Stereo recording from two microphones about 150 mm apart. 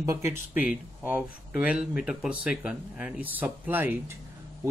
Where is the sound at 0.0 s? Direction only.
20° right (ahead or behind).